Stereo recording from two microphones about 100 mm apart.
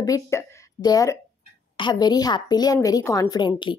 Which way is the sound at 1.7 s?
50° left (ahead or behind).